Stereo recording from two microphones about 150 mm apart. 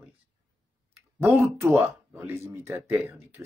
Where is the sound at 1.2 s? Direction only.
10° right (ahead or behind).